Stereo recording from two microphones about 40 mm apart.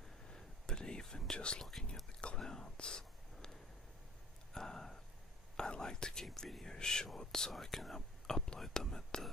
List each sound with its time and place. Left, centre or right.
0.3 s whispering: centre
1.6 s whispering: centre
2.1 s whispering: left
2.4 s a sound: centre
4.6 s a sound: centre
5.6 s whispering: centre
7.5 s whispering: centre